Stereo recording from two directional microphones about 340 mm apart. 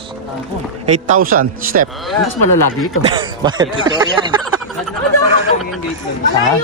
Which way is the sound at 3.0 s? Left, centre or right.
Centre.